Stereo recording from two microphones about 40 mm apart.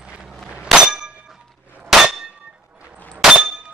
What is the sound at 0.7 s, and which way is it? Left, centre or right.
Clang, centre.